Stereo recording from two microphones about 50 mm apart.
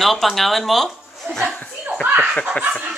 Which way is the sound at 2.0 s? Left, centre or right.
Right.